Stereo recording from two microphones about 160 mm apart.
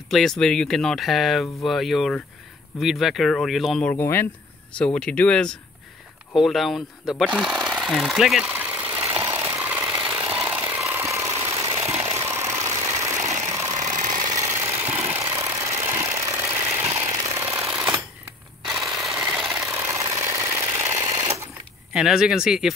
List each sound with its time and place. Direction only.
0.1 s speech: 5° left (ahead or behind)
3.9 s speech: 15° left (ahead or behind)
6.3 s a sound: centre (ahead or behind); by 11.8 s 20° right (ahead or behind)
11.9 s engine: 15° right (ahead or behind)
13.9 s engine: 50° right (ahead or behind)
14.3 s engine: 20° right (ahead or behind)
16.9 s jackhammer: 20° right (ahead or behind)
18.8 s a sound: centre (ahead or behind)
19.9 s engine: 20° right (ahead or behind)
21.9 s speech: 5° right (ahead or behind)